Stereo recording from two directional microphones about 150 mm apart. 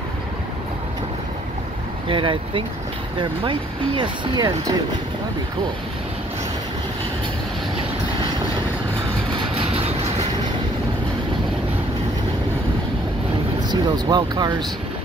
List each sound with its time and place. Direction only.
2.0 s speech: 35° right (ahead or behind)
9.6 s vehicle: 40° right (ahead or behind)
13.6 s speech: 30° right (ahead or behind)